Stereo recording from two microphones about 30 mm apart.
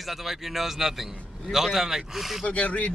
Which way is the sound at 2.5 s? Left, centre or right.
Left.